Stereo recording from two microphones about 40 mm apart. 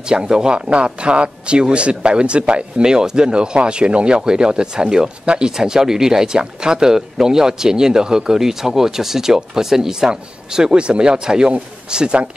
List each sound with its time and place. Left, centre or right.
0.1 s a man's voice: right
2.8 s a man's voice: centre